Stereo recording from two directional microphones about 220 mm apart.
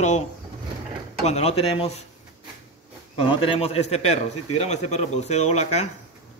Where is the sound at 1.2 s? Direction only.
30° left (ahead or behind).